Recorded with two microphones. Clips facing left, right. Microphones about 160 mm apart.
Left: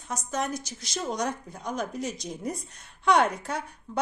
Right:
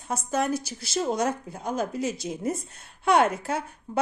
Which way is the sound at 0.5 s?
10° right (ahead or behind).